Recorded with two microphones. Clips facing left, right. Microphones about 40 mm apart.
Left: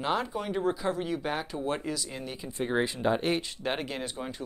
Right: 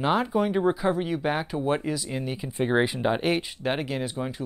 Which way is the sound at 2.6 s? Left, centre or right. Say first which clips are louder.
Right 4 dB; right.